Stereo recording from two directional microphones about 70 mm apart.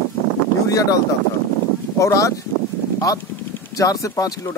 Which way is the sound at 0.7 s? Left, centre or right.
Left.